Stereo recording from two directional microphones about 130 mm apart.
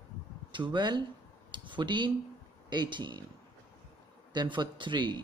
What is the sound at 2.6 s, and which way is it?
Speech, 35° right (ahead or behind).